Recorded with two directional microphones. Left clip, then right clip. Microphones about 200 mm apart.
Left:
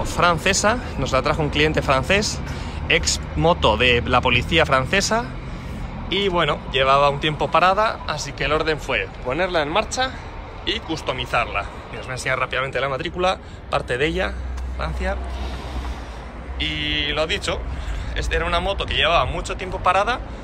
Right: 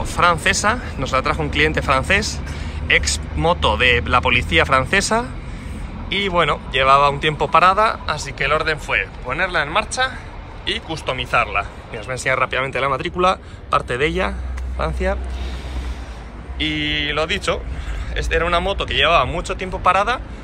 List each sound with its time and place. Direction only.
0.0 s speech: 15° left (ahead or behind)
16.5 s speech: 5° left (ahead or behind)